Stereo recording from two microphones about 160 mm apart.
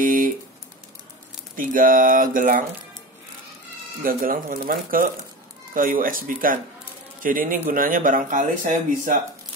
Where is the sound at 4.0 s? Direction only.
60° right (ahead or behind).